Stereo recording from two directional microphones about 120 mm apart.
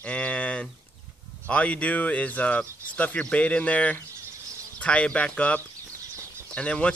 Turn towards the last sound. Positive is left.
turn(degrees=10)  # may be behind; listen again after turning